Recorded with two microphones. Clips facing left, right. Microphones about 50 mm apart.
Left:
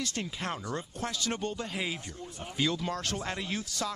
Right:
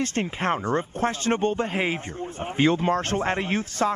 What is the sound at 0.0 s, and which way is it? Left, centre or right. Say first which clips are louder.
Speech: right 9 dB; right.